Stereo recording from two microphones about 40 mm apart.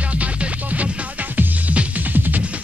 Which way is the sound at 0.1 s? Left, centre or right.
Right.